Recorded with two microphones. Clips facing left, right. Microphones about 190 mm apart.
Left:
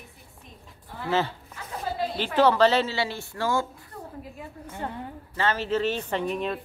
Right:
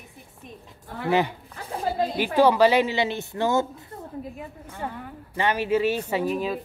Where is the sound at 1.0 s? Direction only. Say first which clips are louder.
Right 3 dB; 15° right (ahead or behind).